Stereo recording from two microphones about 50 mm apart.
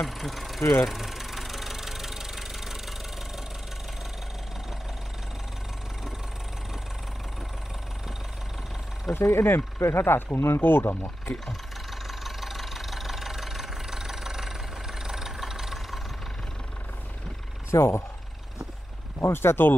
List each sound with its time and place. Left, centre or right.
0.0 s engine: centre
9.1 s speech: left
12.1 s vehicle: centre
17.6 s speech: left
19.2 s speech: left